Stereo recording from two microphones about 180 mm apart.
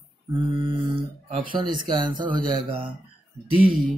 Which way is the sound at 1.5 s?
25° right (ahead or behind).